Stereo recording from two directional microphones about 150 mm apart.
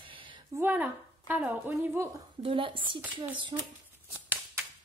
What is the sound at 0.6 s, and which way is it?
A woman's voice, 15° right (ahead or behind).